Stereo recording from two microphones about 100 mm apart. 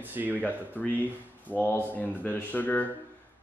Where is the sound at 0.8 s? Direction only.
15° left (ahead or behind).